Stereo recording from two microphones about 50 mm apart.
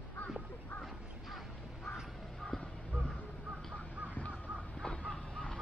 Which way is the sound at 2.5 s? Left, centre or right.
Centre.